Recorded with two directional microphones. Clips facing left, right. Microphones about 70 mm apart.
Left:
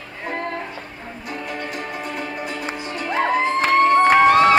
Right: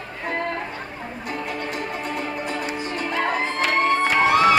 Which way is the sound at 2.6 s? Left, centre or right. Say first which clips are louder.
Even; left.